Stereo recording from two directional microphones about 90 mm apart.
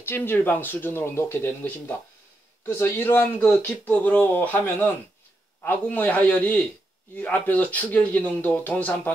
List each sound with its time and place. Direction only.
0.0 s a man's voice: 25° left (ahead or behind)